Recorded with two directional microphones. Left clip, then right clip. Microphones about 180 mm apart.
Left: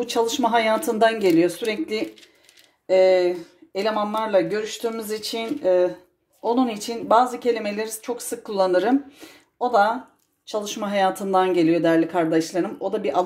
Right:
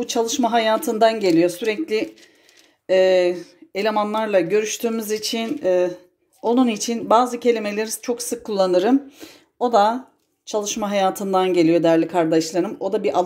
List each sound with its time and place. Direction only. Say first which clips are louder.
0.0 s speech: right 1 dB; 15° right (ahead or behind)